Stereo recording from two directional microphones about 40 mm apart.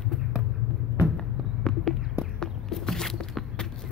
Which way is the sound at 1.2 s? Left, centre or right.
Centre.